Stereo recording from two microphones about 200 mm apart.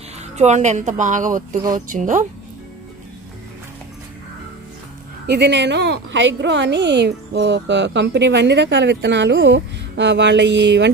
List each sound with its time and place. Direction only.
0.4 s a woman's voice: 35° right (ahead or behind)
5.2 s a woman's voice: 55° right (ahead or behind)